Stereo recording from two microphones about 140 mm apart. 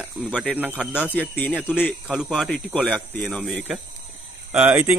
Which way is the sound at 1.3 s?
10° left (ahead or behind).